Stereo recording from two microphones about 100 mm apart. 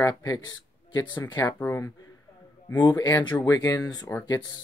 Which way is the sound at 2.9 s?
45° left (ahead or behind).